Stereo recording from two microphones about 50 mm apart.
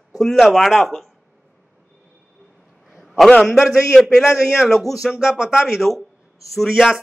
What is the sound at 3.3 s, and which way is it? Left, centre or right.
A man's voice, centre.